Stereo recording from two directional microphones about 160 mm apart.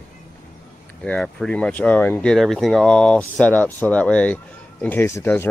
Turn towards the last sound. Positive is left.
turn(degrees=15)  # may be behind; listen again after turning